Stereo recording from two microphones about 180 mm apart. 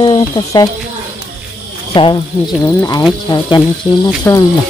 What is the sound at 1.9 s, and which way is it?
Speech, 25° left (ahead or behind).